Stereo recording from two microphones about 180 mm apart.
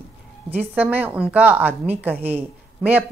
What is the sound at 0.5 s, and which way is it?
Speech, 10° right (ahead or behind).